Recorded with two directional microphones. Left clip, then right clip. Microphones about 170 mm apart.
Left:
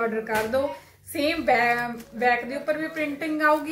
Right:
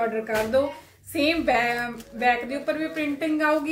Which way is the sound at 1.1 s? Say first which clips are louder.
Even; 15° right (ahead or behind).